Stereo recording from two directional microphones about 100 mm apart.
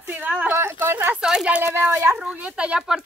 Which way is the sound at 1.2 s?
10° right (ahead or behind).